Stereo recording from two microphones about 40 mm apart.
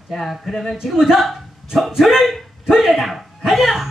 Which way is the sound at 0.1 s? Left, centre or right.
Centre.